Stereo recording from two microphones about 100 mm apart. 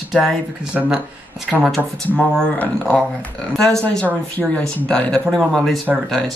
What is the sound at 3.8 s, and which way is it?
Speech, 15° left (ahead or behind).